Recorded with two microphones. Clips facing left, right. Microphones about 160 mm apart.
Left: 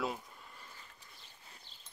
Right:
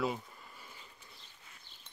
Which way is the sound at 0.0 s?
Centre (ahead or behind).